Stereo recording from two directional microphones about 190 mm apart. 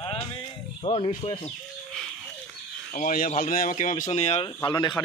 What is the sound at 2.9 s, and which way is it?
Speech, 45° left (ahead or behind).